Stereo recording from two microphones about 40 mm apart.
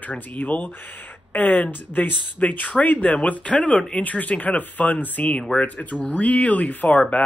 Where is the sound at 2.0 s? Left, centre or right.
Left.